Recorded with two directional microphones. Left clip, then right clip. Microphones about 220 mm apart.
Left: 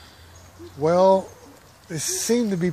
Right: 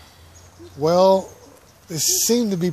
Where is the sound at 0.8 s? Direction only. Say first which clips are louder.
Right 2 dB; 15° right (ahead or behind).